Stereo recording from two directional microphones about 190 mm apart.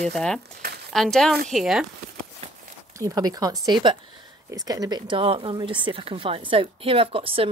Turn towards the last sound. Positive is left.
turn(degrees=-30)  # may be behind; listen again after turning